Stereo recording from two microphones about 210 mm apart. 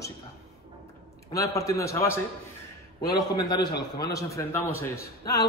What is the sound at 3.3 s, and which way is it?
A man's voice, 20° left (ahead or behind).